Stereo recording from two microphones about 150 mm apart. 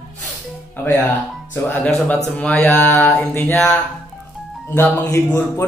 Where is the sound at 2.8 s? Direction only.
20° left (ahead or behind).